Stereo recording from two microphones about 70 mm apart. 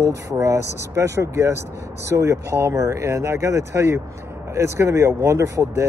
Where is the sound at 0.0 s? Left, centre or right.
Right.